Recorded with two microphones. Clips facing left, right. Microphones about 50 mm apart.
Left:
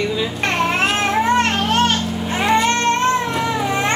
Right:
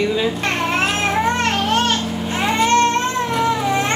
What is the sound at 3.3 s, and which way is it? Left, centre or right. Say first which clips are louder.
Cat: right 2 dB; centre.